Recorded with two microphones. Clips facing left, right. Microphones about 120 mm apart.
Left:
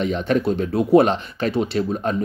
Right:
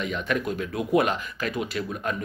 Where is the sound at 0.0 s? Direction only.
35° left (ahead or behind).